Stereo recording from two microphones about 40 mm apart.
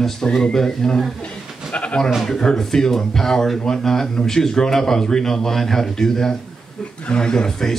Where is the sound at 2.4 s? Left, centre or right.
Left.